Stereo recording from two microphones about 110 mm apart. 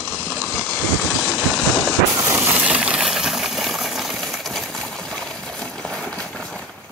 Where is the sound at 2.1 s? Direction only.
25° right (ahead or behind).